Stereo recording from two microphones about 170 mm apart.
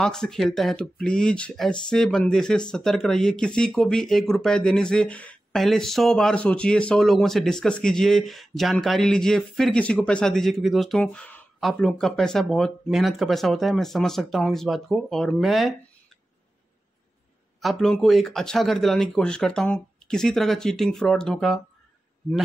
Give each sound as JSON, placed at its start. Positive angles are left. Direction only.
{"t": 0.0, "sound": "speech", "side_deg": 5}
{"t": 17.6, "sound": "speech", "side_deg": 0}